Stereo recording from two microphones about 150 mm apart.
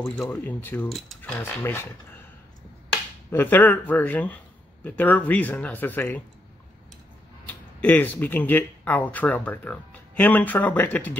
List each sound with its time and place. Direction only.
0.2 s speech: 10° left (ahead or behind)
3.3 s speech: 15° left (ahead or behind)
7.4 s speech: 10° left (ahead or behind)